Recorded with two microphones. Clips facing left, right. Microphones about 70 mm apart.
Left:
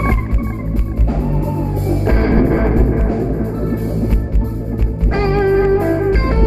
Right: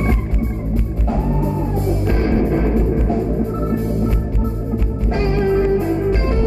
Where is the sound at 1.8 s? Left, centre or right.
Left.